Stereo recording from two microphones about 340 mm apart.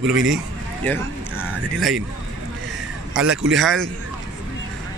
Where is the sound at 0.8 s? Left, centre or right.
Centre.